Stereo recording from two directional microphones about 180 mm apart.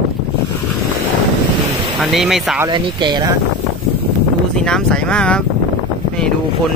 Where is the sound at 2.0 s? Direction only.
Centre (ahead or behind).